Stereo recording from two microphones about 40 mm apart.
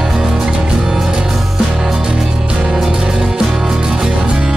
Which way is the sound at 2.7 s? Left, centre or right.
Centre.